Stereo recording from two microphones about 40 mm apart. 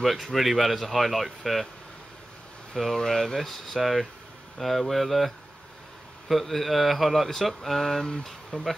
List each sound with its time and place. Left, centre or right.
0.0 s speech: centre
3.0 s speech: centre